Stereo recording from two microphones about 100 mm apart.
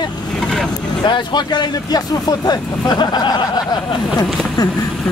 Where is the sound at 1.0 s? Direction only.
50° left (ahead or behind).